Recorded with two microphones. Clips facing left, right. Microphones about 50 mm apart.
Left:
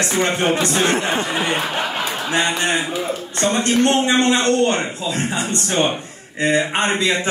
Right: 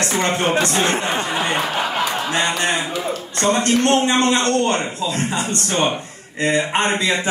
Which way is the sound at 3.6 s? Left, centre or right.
Left.